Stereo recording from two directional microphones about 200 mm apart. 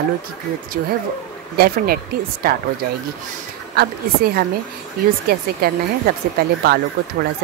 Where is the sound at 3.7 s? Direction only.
50° right (ahead or behind).